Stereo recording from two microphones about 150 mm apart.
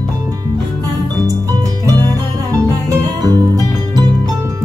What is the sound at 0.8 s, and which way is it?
Music, 25° right (ahead or behind).